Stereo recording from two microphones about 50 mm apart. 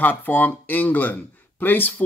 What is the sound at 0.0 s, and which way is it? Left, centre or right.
Speech, left.